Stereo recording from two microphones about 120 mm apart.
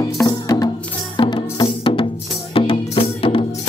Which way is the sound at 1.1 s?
40° left (ahead or behind).